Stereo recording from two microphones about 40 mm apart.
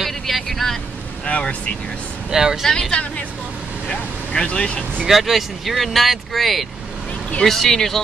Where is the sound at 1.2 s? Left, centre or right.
Left.